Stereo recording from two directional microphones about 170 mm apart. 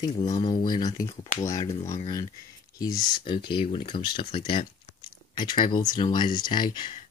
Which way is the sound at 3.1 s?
30° left (ahead or behind).